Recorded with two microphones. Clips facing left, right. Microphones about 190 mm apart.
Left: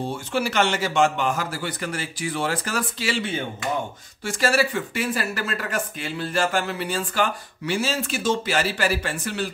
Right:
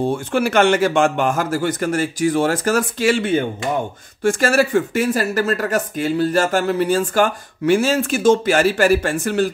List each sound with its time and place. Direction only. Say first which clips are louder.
0.1 s speech: right 7 dB; 55° right (ahead or behind)